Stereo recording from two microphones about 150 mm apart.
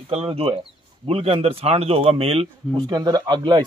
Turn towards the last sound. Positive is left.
turn(degrees=-30)  # may be behind; listen again after turning